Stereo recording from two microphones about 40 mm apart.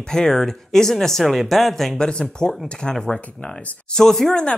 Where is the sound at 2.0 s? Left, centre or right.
Left.